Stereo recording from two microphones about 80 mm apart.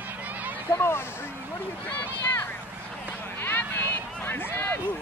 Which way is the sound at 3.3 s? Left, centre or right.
Left.